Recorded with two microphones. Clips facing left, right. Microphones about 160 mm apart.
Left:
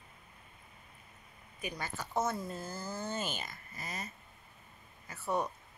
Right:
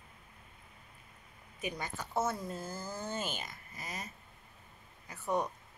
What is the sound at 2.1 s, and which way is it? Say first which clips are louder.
Speech: even; 10° right (ahead or behind).